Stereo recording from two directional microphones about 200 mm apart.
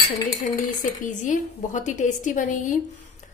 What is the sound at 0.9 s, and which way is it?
A woman's voice, 40° left (ahead or behind).